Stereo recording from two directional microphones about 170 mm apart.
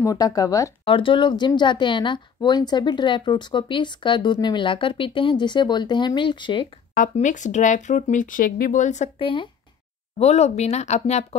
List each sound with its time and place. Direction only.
0.0 s speech: 20° left (ahead or behind)
0.8 s speech: 30° left (ahead or behind)
6.9 s speech: 50° left (ahead or behind)
9.2 s speech: 30° left (ahead or behind)